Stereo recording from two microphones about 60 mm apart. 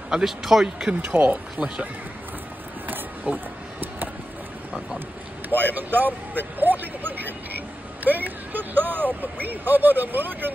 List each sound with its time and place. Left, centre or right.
0.1 s speech: centre
1.0 s speech: right
3.3 s speech: right
5.5 s speech: right